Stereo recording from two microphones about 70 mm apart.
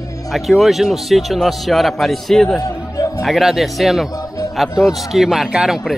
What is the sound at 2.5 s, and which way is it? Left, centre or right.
Music, left.